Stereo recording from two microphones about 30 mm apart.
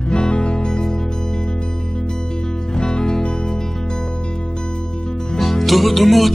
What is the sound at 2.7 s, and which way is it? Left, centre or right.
Music, left.